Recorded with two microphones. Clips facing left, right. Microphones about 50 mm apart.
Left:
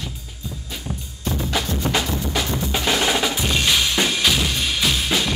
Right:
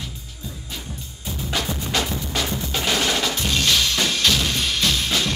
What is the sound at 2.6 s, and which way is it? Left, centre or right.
Drum, centre.